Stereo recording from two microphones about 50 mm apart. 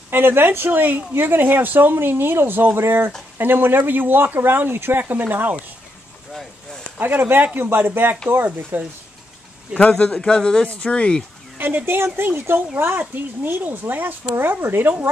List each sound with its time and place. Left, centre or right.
0.1 s a woman's voice: right
3.3 s a woman's voice: right
6.3 s a sound: centre
7.0 s a woman's voice: right
9.9 s speech: centre
11.5 s a woman's voice: right